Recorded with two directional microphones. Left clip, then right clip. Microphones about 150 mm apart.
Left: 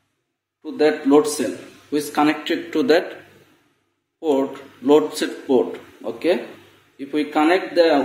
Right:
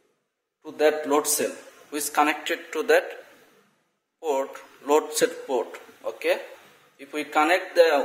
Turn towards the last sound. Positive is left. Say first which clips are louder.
# left 3 dB
turn(degrees=-90)